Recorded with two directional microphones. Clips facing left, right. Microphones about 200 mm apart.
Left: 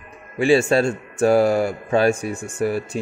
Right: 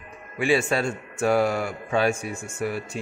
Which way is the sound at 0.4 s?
30° left (ahead or behind).